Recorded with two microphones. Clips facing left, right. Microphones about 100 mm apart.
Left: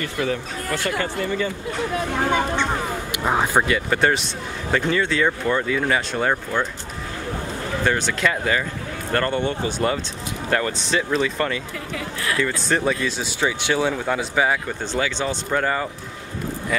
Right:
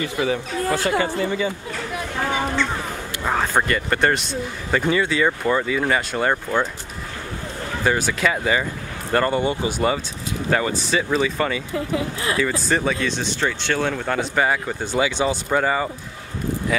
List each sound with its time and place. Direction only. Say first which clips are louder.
0.0 s speech: right 2 dB; 15° right (ahead or behind)
0.7 s speech: right 2 dB; 25° right (ahead or behind)
1.0 s speech: right 2 dB; 15° right (ahead or behind)
3.1 s speech: left 1 dB; 15° left (ahead or behind)
3.6 s speech: even; centre (ahead or behind)
7.8 s speech: right 1 dB; 5° right (ahead or behind)
11.7 s speech: right 6 dB; 25° right (ahead or behind)
12.4 s speech: even; 5° right (ahead or behind)
14.8 s speech: right 3 dB; 10° right (ahead or behind)